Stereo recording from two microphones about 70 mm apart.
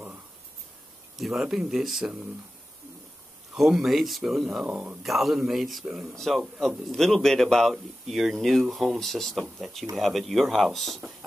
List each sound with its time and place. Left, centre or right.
1.1 s speech: centre
3.5 s speech: centre
4.6 s speech: centre
5.0 s speech: centre